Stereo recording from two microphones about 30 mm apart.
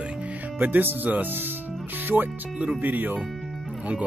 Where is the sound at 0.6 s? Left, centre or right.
Right.